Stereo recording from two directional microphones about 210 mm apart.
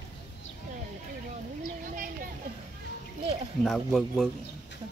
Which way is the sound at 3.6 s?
Centre (ahead or behind).